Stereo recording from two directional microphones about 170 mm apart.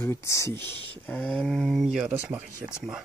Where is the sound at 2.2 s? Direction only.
10° right (ahead or behind).